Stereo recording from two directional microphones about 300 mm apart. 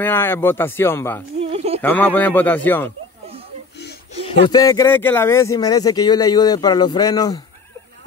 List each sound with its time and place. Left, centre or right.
0.0 s speech: centre
1.4 s a sound: right
1.8 s speech: centre
4.1 s speech: centre